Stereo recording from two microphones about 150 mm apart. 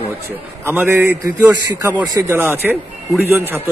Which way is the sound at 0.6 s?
15° right (ahead or behind).